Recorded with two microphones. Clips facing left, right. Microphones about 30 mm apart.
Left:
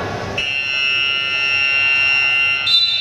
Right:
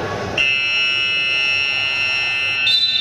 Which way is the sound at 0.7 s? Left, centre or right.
Centre.